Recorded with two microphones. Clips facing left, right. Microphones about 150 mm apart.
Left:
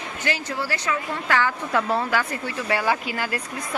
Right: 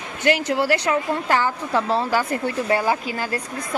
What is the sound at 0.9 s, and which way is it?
A woman's voice, 40° right (ahead or behind).